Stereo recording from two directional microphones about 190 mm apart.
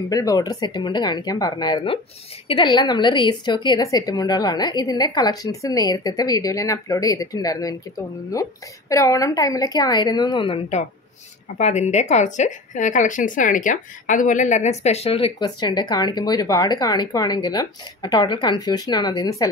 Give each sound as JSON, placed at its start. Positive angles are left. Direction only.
{"t": 0.1, "sound": "a woman's voice", "side_deg": 20}